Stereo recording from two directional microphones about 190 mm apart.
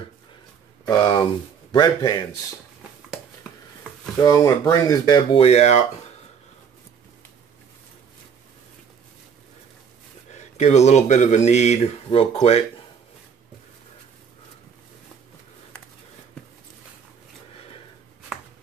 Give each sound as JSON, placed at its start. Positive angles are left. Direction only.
{"t": 0.8, "sound": "speech", "side_deg": 20}
{"t": 4.2, "sound": "speech", "side_deg": 20}
{"t": 10.3, "sound": "speech", "side_deg": 35}